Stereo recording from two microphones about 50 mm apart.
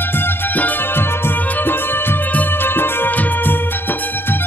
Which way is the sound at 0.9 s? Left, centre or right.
Left.